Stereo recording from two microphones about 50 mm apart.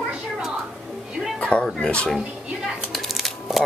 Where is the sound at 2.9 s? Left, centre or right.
Centre.